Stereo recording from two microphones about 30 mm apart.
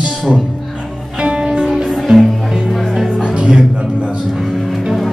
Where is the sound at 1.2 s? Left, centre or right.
Right.